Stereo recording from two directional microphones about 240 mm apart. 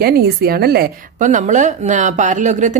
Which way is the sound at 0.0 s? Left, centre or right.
Right.